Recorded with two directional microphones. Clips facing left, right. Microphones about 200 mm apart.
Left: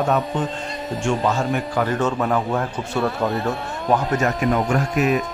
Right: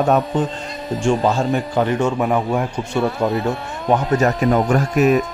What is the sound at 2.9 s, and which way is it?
Speech, centre (ahead or behind).